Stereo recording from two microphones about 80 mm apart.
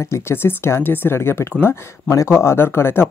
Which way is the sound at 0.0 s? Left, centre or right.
Left.